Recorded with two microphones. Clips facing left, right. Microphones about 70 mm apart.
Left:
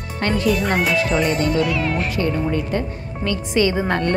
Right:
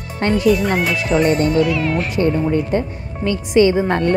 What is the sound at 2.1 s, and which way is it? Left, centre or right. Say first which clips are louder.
Speech: right 4 dB; right.